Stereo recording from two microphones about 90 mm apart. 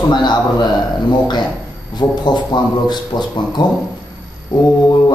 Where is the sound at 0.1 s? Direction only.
55° left (ahead or behind).